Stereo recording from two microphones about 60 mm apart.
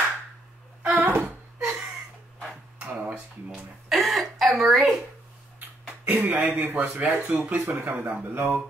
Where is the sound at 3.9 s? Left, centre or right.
Centre.